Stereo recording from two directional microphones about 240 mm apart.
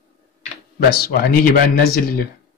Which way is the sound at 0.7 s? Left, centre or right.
Left.